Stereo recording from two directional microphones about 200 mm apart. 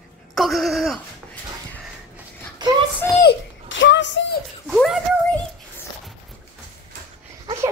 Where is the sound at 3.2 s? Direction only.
65° left (ahead or behind).